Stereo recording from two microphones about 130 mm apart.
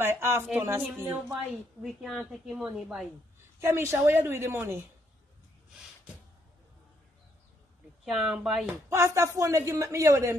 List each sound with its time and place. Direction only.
0.0 s a woman's voice: 20° right (ahead or behind)
1.3 s a woman's voice: centre (ahead or behind)
3.6 s speech: 20° right (ahead or behind)
8.0 s a woman's voice: 5° right (ahead or behind)
8.8 s speech: 25° right (ahead or behind)